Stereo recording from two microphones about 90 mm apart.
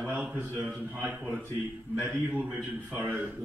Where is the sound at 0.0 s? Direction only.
15° right (ahead or behind).